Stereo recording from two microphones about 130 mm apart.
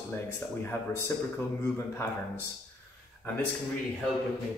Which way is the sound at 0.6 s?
20° left (ahead or behind).